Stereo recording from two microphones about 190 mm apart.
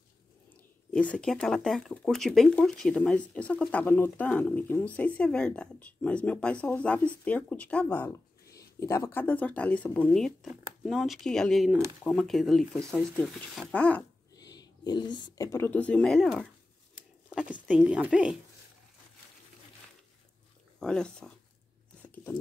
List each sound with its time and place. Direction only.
0.9 s speech: 5° left (ahead or behind)
14.3 s speech: 20° left (ahead or behind); by 18.4 s 5° right (ahead or behind)
20.8 s speech: 5° left (ahead or behind)
22.0 s filing: 10° left (ahead or behind)